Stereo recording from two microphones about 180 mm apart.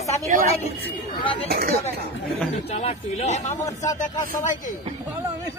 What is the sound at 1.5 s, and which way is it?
Speech, 55° right (ahead or behind).